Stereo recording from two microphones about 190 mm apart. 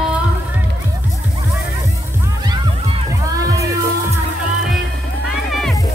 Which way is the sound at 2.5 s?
30° right (ahead or behind).